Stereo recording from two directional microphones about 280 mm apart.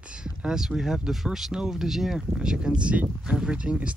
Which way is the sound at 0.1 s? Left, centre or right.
Centre.